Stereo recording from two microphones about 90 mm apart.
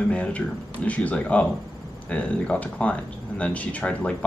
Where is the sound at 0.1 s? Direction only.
15° left (ahead or behind).